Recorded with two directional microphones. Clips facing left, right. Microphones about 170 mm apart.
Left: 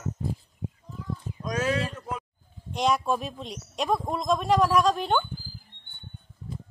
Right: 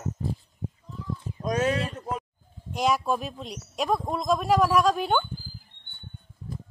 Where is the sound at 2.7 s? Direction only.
5° right (ahead or behind).